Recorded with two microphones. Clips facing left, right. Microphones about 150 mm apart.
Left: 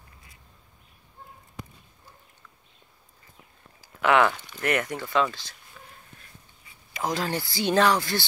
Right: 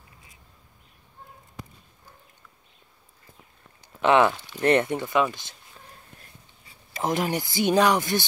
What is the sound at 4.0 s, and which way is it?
Speech, 20° right (ahead or behind).